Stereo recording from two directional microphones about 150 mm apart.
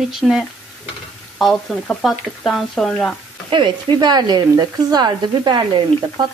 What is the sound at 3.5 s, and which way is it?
Speech, 30° right (ahead or behind).